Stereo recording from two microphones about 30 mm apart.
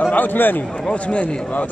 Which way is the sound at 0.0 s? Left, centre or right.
Left.